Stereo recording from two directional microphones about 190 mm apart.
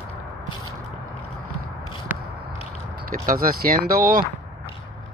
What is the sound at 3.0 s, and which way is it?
Speech, 45° right (ahead or behind).